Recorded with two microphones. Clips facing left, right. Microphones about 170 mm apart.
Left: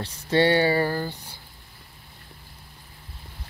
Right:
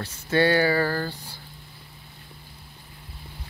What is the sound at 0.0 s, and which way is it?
Speech, 30° left (ahead or behind).